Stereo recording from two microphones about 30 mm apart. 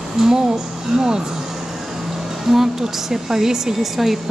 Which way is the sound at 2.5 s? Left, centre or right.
Centre.